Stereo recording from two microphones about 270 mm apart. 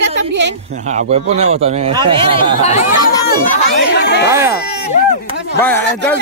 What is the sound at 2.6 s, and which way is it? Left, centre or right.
Speech, left.